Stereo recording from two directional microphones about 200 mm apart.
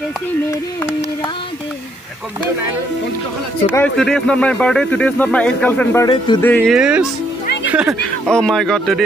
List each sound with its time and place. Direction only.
3.6 s speech: 10° left (ahead or behind)
6.4 s speech: 5° left (ahead or behind)